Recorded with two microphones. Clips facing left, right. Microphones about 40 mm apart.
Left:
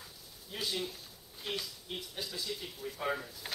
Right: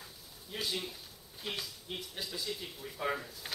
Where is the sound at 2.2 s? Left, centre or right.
Centre.